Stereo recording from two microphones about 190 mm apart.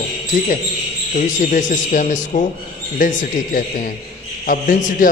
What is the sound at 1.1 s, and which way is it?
A man's voice, 45° left (ahead or behind).